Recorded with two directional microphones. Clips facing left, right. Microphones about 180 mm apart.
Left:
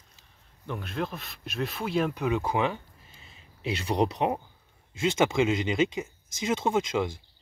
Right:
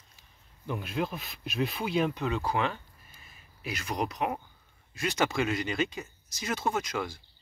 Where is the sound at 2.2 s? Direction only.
20° left (ahead or behind).